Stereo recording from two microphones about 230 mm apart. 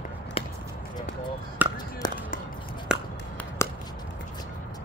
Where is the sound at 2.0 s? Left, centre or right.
Centre.